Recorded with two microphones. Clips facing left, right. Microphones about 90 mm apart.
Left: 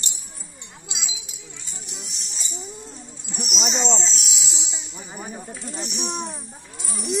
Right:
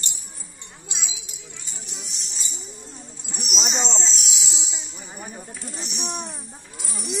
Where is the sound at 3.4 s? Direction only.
Centre (ahead or behind).